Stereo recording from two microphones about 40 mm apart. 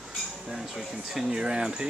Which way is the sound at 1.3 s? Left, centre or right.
Right.